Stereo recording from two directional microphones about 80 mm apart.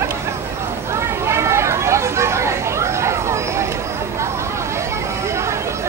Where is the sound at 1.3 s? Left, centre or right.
Right.